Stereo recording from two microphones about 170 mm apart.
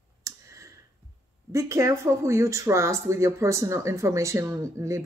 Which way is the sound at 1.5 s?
20° right (ahead or behind).